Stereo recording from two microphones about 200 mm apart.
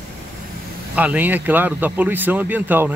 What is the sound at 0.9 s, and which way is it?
A man's voice, 10° right (ahead or behind).